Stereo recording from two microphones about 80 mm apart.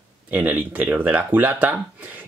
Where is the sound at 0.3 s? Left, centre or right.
Right.